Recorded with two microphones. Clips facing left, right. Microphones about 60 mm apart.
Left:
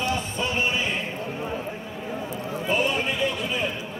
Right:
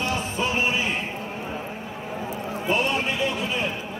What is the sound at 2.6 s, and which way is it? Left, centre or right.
Horse, centre.